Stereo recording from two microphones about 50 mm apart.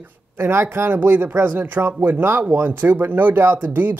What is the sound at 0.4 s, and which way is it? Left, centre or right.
Speech, right.